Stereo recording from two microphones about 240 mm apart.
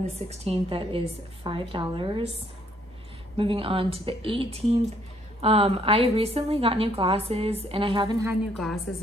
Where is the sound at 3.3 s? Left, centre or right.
Right.